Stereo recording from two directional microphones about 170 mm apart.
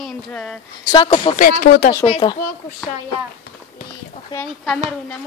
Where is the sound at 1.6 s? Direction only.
55° left (ahead or behind).